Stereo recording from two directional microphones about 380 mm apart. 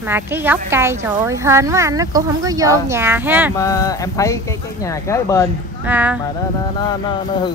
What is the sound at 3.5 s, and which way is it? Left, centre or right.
Speech, centre.